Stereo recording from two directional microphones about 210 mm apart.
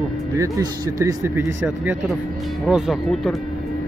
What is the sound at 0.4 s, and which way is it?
Speech, 15° right (ahead or behind).